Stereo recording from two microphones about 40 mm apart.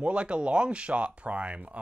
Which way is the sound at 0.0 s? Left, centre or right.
Right.